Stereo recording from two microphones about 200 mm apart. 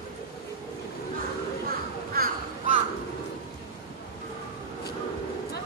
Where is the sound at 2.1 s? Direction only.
50° right (ahead or behind).